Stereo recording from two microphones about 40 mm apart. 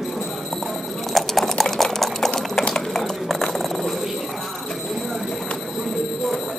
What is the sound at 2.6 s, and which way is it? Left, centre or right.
Cutlery, left.